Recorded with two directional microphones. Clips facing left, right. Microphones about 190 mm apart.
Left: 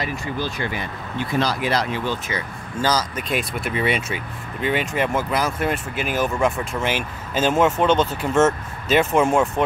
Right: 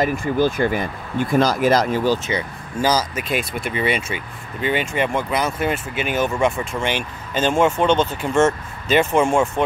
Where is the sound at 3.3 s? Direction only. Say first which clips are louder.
Even; centre (ahead or behind).